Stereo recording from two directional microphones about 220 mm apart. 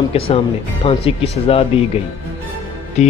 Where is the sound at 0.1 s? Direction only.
25° left (ahead or behind).